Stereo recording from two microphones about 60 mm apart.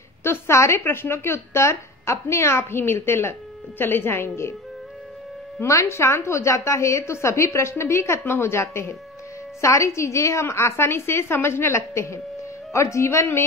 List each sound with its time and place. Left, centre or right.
0.2 s speech: left
5.6 s speech: left